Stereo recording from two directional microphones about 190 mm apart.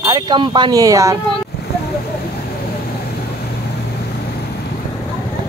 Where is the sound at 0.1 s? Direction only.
25° right (ahead or behind).